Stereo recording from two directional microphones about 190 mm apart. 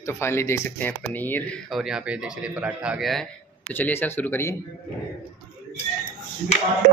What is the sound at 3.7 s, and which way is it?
Speech, 10° left (ahead or behind).